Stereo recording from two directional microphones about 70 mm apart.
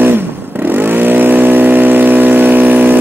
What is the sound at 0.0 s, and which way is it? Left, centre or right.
Vehicle, right.